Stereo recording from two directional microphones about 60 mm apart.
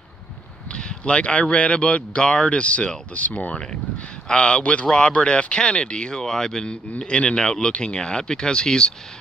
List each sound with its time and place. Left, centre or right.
0.7 s speech: centre